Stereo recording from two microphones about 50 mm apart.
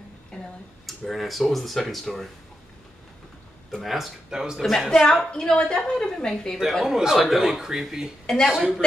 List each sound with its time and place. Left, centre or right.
0.3 s a sound: centre
0.8 s speech: centre
3.8 s speech: centre
4.6 s a woman's voice: centre
6.8 s speech: centre